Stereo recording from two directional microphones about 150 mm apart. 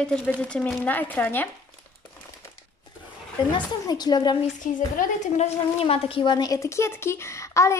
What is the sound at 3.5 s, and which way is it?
Speech, 25° left (ahead or behind).